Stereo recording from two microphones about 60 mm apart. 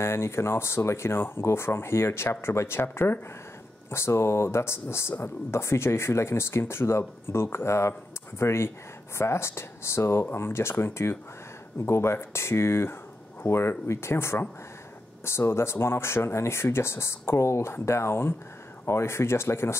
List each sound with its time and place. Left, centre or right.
0.0 s speech: left